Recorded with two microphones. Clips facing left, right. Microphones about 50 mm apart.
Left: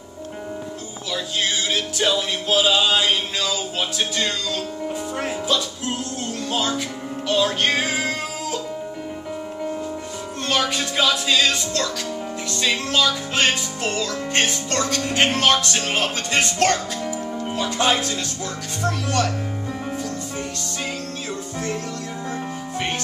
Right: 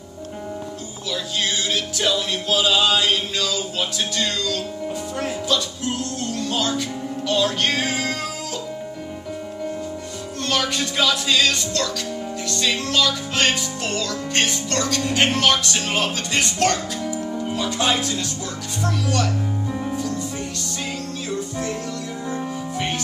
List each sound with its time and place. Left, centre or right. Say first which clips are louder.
1.7 s music: left 1 dB; centre
6.5 s speech: left 1 dB; left
7.2 s music: left 1 dB; centre
10.5 s music: left 1 dB; centre
12.4 s speech: even; centre; by 19.3 s left